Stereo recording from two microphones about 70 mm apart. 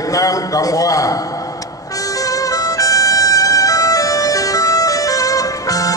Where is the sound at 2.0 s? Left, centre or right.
Left.